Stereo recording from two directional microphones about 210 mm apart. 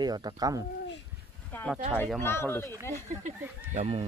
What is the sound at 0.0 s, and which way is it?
Speech, 20° right (ahead or behind).